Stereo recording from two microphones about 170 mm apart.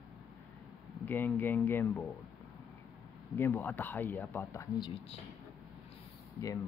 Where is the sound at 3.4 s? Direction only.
10° left (ahead or behind).